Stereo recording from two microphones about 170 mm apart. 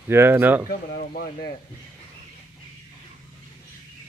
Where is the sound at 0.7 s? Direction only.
65° left (ahead or behind).